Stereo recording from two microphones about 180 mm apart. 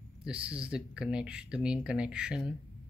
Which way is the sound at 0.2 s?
5° right (ahead or behind).